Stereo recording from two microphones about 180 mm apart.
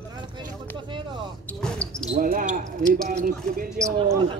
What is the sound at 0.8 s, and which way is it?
Speech, 25° right (ahead or behind).